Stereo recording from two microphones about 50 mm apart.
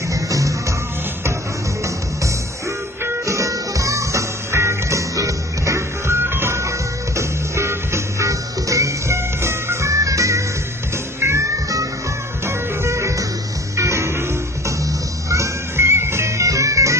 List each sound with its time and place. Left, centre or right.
0.1 s music: right
3.3 s music: right
6.1 s music: right
7.2 s music: right
11.1 s music: right
12.4 s music: right
15.2 s music: right